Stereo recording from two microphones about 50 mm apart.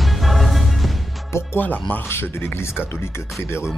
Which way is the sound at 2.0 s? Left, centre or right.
Left.